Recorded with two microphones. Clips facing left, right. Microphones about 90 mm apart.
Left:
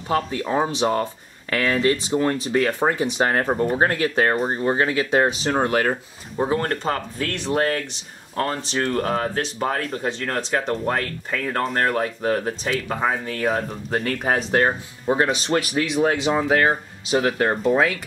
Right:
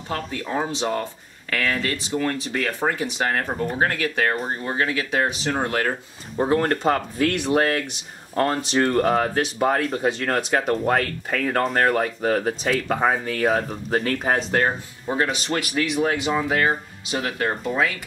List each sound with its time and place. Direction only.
0.1 s speech: 15° left (ahead or behind)
6.3 s speech: centre (ahead or behind); by 17.9 s 35° left (ahead or behind)